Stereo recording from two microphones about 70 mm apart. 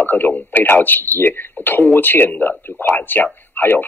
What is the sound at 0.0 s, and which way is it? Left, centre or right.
Speech, left.